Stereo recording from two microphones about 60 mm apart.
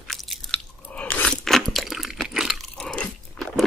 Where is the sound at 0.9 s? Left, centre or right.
Left.